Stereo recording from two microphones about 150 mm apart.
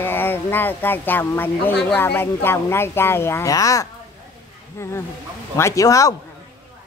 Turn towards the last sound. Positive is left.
turn(degrees=20)  # may be behind; listen again after turning